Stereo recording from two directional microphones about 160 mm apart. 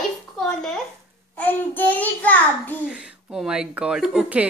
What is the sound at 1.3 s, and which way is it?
Child singing, 10° left (ahead or behind).